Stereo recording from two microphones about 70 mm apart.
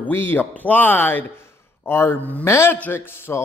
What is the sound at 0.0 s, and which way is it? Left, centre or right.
Speech, left.